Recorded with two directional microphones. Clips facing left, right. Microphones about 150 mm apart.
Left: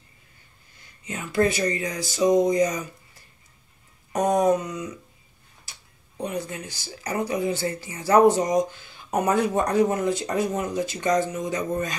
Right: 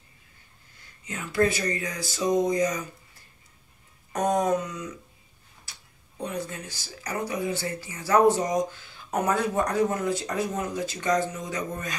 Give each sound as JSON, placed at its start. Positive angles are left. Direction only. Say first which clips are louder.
{"t": 1.0, "sound": "speech", "louder": "left 2 dB", "side_deg": 20}
{"t": 4.1, "sound": "a sound", "louder": "left 4 dB", "side_deg": 20}
{"t": 7.0, "sound": "speech", "louder": "left 4 dB", "side_deg": 25}